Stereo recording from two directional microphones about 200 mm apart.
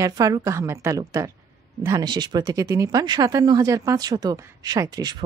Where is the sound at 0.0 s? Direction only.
15° right (ahead or behind).